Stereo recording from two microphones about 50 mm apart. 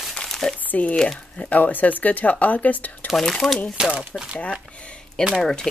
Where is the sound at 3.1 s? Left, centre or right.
Centre.